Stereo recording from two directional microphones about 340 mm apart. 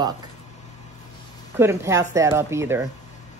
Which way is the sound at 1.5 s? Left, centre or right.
Centre.